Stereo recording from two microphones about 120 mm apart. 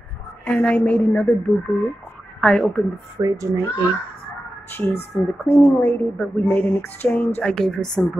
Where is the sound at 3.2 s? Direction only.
25° right (ahead or behind).